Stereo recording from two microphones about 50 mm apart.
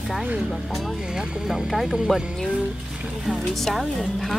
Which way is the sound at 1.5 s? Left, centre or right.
Centre.